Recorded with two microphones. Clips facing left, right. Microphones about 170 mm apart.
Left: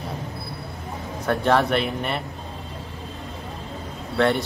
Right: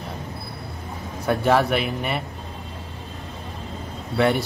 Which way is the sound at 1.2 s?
5° right (ahead or behind).